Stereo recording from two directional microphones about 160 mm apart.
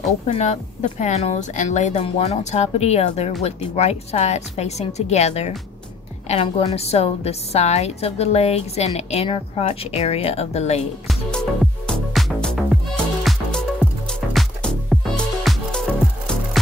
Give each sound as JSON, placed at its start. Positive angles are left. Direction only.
{"t": 0.3, "sound": "a woman's voice", "side_deg": 45}
{"t": 11.1, "sound": "music", "side_deg": 5}